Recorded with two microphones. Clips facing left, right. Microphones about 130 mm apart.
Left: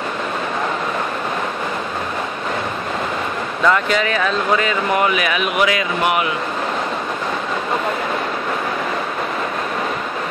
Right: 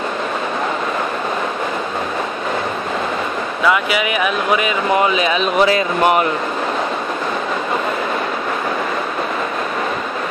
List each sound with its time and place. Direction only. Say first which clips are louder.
3.6 s speech: even; 10° right (ahead or behind); by 6.2 s 35° right (ahead or behind)